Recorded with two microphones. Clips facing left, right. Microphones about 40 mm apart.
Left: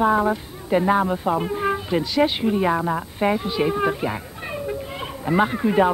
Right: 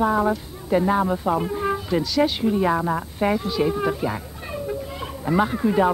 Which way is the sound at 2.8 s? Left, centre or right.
Centre.